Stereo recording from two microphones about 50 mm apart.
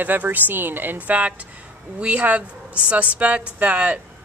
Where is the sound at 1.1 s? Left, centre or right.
Right.